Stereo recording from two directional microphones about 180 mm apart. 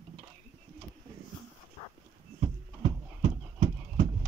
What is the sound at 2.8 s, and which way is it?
Clip-clop, 35° right (ahead or behind).